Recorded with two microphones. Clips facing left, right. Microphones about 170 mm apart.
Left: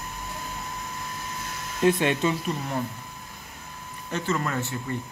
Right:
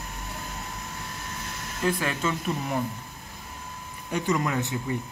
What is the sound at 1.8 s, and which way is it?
Speech, 25° left (ahead or behind).